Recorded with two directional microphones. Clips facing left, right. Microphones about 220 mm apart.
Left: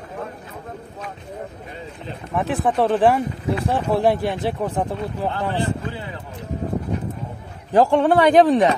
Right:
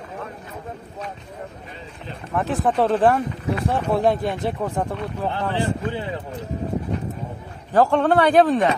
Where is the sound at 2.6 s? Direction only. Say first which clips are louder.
Left 1 dB; centre (ahead or behind).